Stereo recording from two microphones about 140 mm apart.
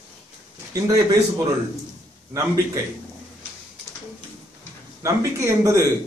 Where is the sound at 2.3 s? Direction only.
25° right (ahead or behind).